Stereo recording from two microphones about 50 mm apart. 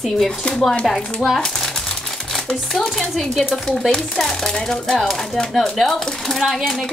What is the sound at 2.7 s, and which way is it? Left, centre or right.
Speech, centre.